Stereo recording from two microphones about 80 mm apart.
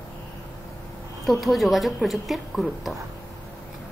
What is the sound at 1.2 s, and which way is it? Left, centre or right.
A woman's voice, centre.